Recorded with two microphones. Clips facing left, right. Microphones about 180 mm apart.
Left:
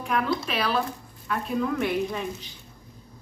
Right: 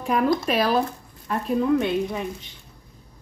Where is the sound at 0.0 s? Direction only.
40° right (ahead or behind).